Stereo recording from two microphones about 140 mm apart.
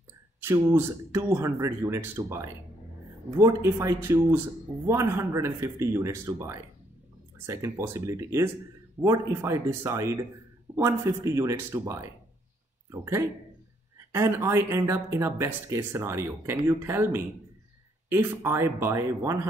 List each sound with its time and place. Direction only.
0.4 s speech: 15° right (ahead or behind)